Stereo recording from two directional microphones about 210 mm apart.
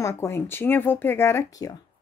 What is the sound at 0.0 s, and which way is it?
Speech, 15° left (ahead or behind).